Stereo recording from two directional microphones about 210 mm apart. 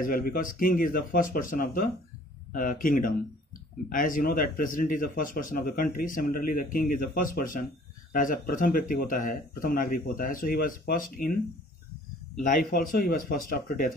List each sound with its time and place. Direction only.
0.0 s speech: 45° left (ahead or behind)
12.4 s speech: 40° left (ahead or behind)